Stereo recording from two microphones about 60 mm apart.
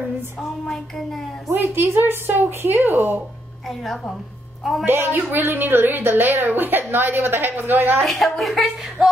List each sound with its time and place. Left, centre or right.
0.4 s child singing: centre
1.5 s a woman's voice: right
3.6 s a woman's voice: centre
4.8 s a woman's voice: right
8.0 s a woman's voice: centre
9.0 s music: centre